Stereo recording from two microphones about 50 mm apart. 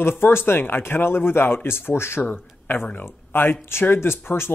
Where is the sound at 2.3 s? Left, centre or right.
Left.